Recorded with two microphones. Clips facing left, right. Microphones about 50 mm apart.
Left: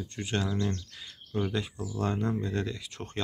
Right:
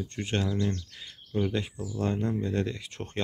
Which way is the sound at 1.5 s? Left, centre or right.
Right.